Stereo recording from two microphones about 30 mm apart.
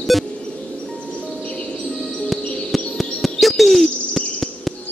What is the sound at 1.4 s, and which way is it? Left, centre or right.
Music, left.